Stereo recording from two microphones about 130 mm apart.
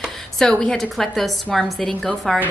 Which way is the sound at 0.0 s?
5° left (ahead or behind).